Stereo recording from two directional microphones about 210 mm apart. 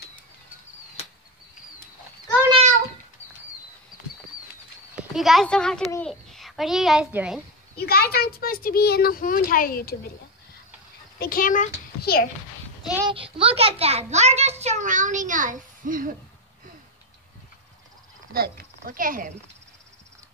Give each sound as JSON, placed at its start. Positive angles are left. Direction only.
{"t": 2.5, "sound": "a sound", "side_deg": -35}
{"t": 5.1, "sound": "a child's voice", "side_deg": 0}
{"t": 7.7, "sound": "a child's voice", "side_deg": 50}
{"t": 11.1, "sound": "a child's voice", "side_deg": 45}
{"t": 13.0, "sound": "a child's voice", "side_deg": -25}
{"t": 18.3, "sound": "a sound", "side_deg": -45}